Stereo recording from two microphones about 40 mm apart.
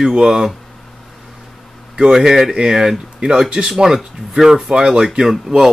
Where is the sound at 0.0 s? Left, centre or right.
Centre.